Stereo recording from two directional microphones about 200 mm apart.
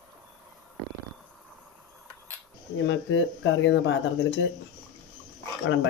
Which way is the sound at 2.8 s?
65° left (ahead or behind).